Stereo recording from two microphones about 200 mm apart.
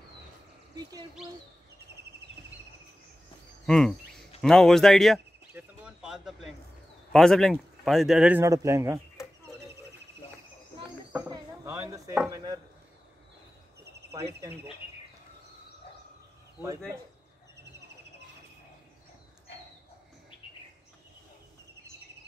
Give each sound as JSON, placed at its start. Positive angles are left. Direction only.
{"t": 3.6, "sound": "cricket", "side_deg": 0}
{"t": 4.4, "sound": "speech", "side_deg": 0}
{"t": 5.5, "sound": "bird", "side_deg": -5}
{"t": 7.1, "sound": "speech", "side_deg": 0}
{"t": 11.1, "sound": "a sound", "side_deg": -15}
{"t": 13.8, "sound": "a sound", "side_deg": -55}
{"t": 14.4, "sound": "speech", "side_deg": -10}